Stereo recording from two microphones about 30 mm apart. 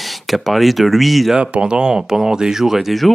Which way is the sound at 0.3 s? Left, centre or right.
Centre.